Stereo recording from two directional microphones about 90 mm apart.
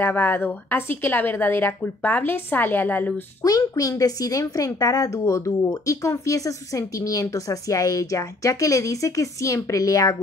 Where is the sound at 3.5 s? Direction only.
40° left (ahead or behind).